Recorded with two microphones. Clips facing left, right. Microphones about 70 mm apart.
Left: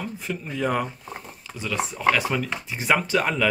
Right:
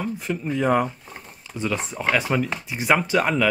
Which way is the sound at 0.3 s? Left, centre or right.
Centre.